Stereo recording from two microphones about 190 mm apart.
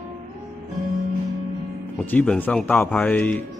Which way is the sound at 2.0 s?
5° left (ahead or behind).